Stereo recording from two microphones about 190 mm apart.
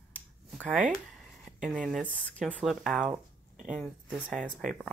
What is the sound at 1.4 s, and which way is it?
Speech, 5° right (ahead or behind).